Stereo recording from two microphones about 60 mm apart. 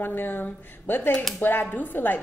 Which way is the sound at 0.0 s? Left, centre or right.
Left.